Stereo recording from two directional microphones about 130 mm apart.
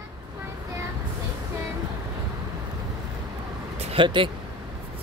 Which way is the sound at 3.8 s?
50° right (ahead or behind).